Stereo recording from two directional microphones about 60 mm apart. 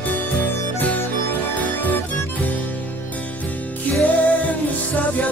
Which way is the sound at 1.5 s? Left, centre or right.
Left.